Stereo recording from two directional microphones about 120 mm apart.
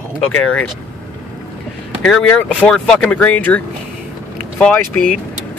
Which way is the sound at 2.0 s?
10° left (ahead or behind).